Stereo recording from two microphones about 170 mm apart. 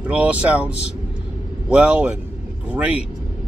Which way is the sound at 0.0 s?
10° right (ahead or behind).